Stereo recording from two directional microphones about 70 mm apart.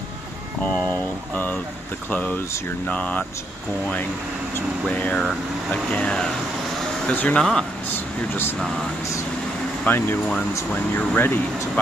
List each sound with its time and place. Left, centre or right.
0.6 s speech: centre
4.8 s speech: left
5.1 s speech: centre
9.8 s speech: left